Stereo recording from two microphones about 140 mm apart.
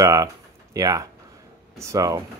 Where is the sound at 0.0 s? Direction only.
25° right (ahead or behind).